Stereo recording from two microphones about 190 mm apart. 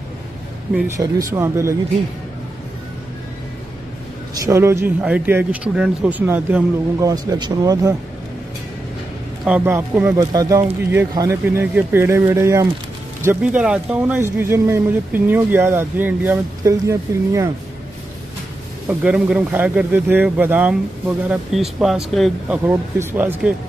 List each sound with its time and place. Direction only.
0.8 s speech: 15° right (ahead or behind)
4.4 s speech: 15° right (ahead or behind)
9.4 s speech: 10° right (ahead or behind)
18.9 s speech: 5° right (ahead or behind)